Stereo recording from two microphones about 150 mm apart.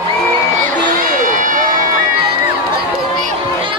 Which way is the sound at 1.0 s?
65° right (ahead or behind).